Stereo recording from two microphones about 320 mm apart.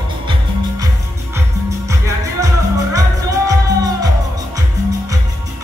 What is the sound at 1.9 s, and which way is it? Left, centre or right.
Music, centre.